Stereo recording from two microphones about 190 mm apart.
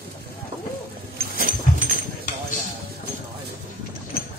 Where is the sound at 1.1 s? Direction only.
50° right (ahead or behind).